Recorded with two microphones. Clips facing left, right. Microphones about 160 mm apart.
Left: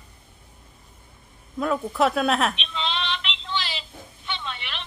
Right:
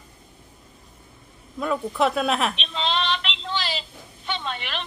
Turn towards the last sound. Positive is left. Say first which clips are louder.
# right 4 dB
turn(degrees=-45)  # may be behind; listen again after turning